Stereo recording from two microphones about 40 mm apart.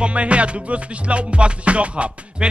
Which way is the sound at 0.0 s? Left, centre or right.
Right.